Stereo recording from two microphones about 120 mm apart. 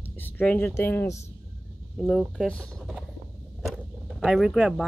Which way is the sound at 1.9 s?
5° left (ahead or behind).